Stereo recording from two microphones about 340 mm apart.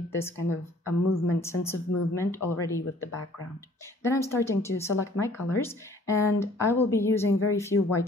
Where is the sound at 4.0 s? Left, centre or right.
Centre.